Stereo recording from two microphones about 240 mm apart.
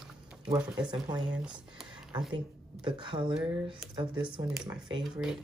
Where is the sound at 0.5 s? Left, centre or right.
Centre.